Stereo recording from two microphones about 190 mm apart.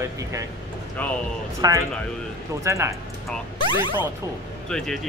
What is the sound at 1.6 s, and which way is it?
Speech, 20° right (ahead or behind).